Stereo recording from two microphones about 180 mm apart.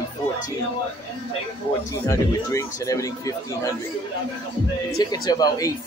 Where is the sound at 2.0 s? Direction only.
15° left (ahead or behind).